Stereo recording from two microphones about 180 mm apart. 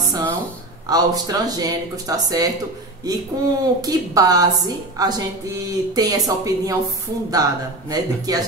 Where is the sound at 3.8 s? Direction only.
20° right (ahead or behind).